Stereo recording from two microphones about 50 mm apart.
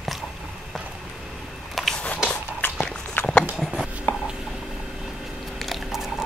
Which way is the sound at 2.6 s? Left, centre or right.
Left.